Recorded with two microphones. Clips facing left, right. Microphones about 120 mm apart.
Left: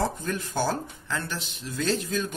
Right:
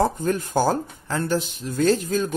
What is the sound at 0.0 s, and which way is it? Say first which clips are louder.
Speech: right 7 dB; 45° right (ahead or behind).